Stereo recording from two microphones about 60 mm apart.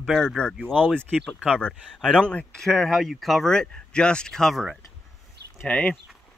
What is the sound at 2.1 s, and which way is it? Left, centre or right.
Speech, left.